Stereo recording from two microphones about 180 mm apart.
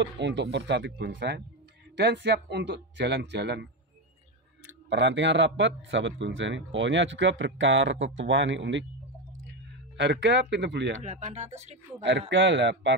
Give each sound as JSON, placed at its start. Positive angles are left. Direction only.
{"t": 0.0, "sound": "speech", "side_deg": -80}
{"t": 4.8, "sound": "a man's voice", "side_deg": -80}
{"t": 9.9, "sound": "speech", "side_deg": -85}
{"t": 11.0, "sound": "speech", "side_deg": -45}
{"t": 12.0, "sound": "speech", "side_deg": -85}